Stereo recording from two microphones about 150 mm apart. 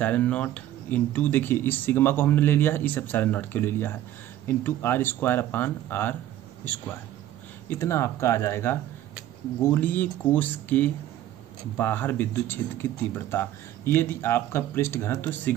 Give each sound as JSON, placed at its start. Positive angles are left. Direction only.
{"t": 0.0, "sound": "speech", "side_deg": 10}